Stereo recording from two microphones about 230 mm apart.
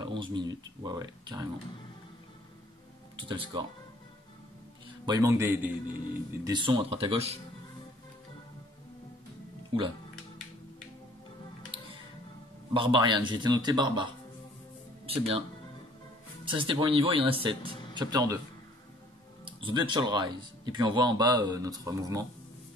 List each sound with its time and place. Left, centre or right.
0.0 s speech: centre
3.2 s speech: right
5.0 s speech: centre
6.4 s speech: centre
9.7 s speech: right
12.7 s speech: right
15.0 s speech: right
16.4 s speech: right
19.4 s speech: centre